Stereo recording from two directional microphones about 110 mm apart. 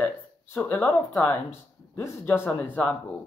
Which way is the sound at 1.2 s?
15° left (ahead or behind).